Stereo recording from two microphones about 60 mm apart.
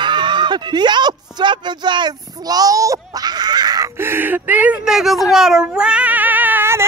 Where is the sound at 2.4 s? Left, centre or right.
Right.